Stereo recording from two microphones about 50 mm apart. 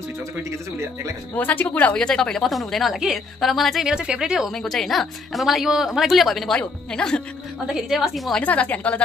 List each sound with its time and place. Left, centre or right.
0.4 s a man's voice: right
1.3 s a woman's voice: left
2.0 s a woman's voice: centre
3.8 s speech: centre
4.6 s a woman's voice: centre
6.5 s speech: centre
7.6 s a woman's voice: centre
8.4 s a woman's voice: left